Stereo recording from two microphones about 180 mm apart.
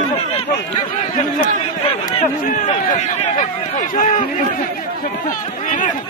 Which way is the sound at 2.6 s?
35° left (ahead or behind).